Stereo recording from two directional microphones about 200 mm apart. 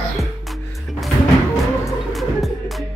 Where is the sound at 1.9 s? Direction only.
Centre (ahead or behind).